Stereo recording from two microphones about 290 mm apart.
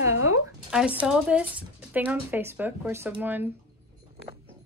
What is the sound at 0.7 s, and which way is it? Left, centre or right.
Speech, centre.